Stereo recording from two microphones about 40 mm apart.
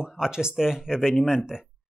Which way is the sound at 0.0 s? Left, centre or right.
Centre.